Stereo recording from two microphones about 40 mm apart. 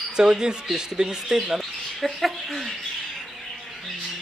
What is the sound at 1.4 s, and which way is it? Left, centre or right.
Speech, centre.